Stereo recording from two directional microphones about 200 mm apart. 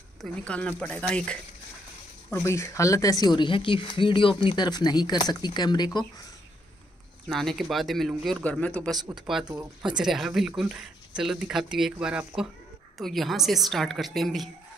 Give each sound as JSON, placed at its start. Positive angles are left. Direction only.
{"t": 0.2, "sound": "speech", "side_deg": 5}
{"t": 7.2, "sound": "speech", "side_deg": 0}